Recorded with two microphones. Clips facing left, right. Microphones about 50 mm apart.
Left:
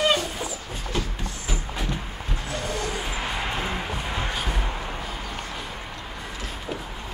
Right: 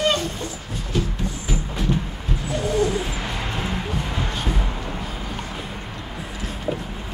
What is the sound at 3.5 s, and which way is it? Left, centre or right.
Music, centre.